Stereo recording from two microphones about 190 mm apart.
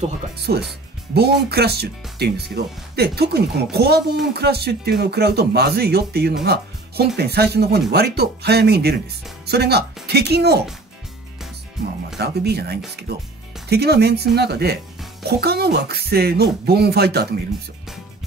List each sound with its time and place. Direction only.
0.4 s speech: 55° right (ahead or behind)
6.4 s music: 60° right (ahead or behind)
7.2 s speech: 55° right (ahead or behind)
12.2 s speech: 60° right (ahead or behind)